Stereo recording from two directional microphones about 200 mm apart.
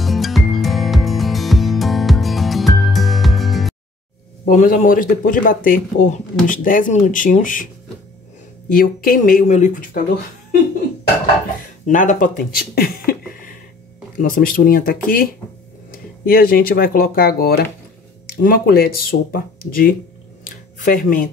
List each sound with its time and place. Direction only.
0.0 s music: centre (ahead or behind)
4.5 s speech: 40° left (ahead or behind)
8.7 s speech: 45° left (ahead or behind)
11.8 s speech: 40° left (ahead or behind)